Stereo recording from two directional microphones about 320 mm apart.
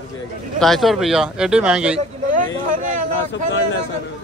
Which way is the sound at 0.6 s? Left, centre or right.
Centre.